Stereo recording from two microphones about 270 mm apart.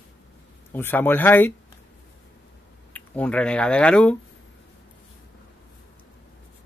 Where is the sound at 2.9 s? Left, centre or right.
Centre.